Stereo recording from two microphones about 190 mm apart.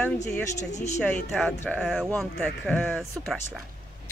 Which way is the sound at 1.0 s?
5° left (ahead or behind).